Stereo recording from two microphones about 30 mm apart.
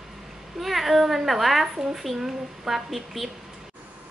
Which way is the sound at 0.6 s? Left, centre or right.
Centre.